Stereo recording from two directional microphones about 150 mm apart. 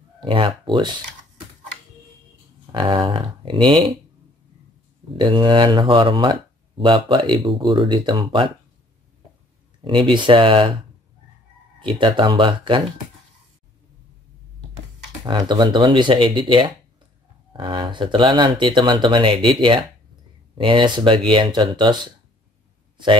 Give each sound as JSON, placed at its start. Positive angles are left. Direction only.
{"t": 0.2, "sound": "speech", "side_deg": -35}
{"t": 2.7, "sound": "speech", "side_deg": -35}
{"t": 5.1, "sound": "speech", "side_deg": -30}
{"t": 9.8, "sound": "speech", "side_deg": -35}
{"t": 11.8, "sound": "speech", "side_deg": -35}
{"t": 15.2, "sound": "speech", "side_deg": -30}